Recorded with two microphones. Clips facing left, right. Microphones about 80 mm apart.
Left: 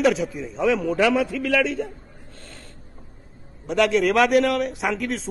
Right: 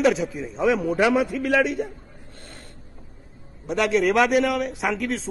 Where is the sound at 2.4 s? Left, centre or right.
Centre.